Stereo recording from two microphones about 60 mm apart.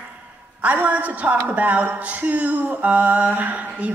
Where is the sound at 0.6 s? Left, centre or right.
Right.